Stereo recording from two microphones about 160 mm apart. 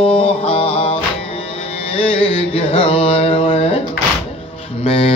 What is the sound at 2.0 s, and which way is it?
Mantra, 35° left (ahead or behind).